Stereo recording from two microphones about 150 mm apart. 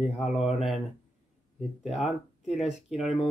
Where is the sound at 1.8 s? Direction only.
5° right (ahead or behind).